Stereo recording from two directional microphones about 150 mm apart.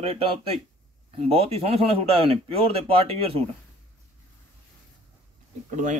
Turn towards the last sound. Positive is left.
turn(degrees=-55)  # may be behind; listen again after turning